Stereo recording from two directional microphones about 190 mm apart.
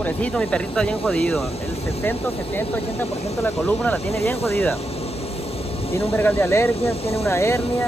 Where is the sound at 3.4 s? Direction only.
10° left (ahead or behind).